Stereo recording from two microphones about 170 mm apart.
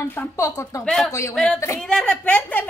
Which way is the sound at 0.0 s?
15° left (ahead or behind).